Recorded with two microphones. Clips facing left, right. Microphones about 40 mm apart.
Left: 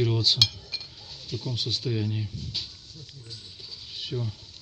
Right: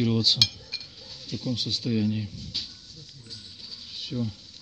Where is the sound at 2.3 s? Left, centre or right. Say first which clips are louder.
Even; left.